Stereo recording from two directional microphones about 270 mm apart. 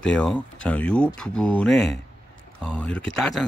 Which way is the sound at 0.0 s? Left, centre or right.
Centre.